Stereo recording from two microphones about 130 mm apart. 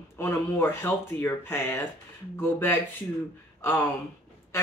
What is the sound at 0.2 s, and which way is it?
Speech, 15° left (ahead or behind).